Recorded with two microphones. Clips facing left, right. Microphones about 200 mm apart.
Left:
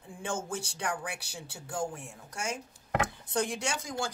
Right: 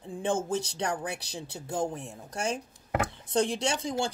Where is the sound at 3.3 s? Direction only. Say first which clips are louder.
Right 5 dB; 25° right (ahead or behind).